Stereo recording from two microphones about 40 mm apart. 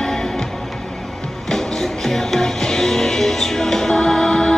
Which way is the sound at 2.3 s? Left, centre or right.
Centre.